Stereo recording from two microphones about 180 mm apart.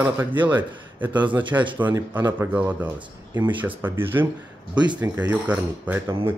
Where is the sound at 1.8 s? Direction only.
10° right (ahead or behind).